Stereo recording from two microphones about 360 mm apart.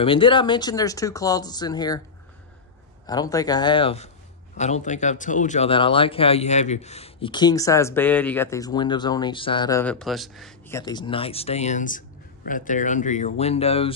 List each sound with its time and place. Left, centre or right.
0.0 s speech: centre
3.1 s speech: centre